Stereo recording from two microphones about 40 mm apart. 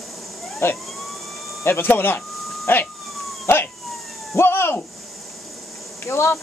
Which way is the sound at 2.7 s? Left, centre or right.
Left.